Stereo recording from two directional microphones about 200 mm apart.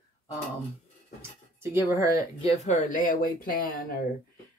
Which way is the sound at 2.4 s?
35° left (ahead or behind).